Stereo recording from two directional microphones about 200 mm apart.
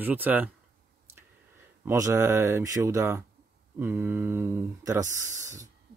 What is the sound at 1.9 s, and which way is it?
Speech, 15° right (ahead or behind).